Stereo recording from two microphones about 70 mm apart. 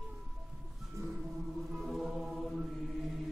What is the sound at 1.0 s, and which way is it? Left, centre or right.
Music, right.